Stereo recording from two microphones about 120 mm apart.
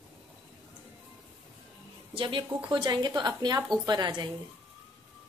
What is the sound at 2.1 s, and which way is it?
Speech, 45° right (ahead or behind).